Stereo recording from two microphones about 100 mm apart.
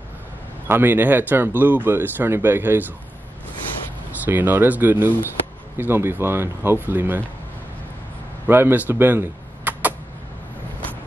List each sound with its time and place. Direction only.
0.7 s speech: 20° right (ahead or behind)
4.3 s speech: 20° right (ahead or behind)
8.5 s speech: 20° right (ahead or behind)